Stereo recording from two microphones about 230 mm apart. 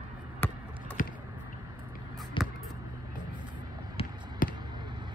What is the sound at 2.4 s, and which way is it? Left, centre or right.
Vehicle, left.